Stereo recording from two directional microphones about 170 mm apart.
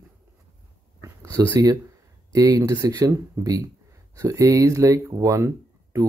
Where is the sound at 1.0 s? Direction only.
20° right (ahead or behind).